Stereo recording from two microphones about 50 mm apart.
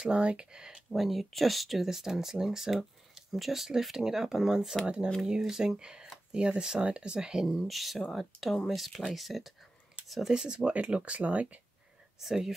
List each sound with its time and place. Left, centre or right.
0.0 s speech: right
0.8 s speech: centre
4.8 s speech: right
5.2 s speech: centre
7.5 s speech: centre
10.3 s speech: centre
12.2 s speech: centre